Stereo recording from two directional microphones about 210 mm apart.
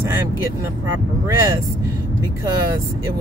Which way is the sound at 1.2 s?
15° right (ahead or behind).